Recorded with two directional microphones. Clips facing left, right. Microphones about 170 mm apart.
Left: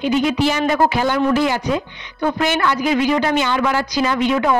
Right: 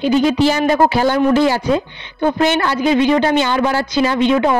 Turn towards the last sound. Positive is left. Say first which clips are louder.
# right 3 dB
turn(degrees=-25)  # may be behind; listen again after turning